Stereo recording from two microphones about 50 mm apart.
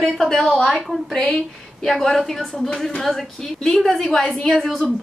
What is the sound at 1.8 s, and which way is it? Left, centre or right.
A woman's voice, centre.